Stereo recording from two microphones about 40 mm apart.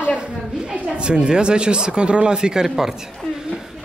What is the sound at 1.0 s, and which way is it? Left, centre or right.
Speech, right.